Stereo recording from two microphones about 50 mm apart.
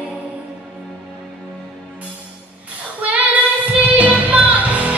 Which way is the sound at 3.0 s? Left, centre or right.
Right.